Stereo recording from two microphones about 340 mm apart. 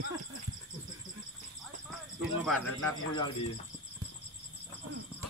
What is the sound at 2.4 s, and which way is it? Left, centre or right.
Speech, centre.